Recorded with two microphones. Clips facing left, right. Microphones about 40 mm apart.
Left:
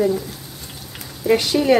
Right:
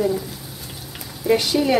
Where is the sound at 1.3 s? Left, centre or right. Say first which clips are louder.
Left 2 dB; centre.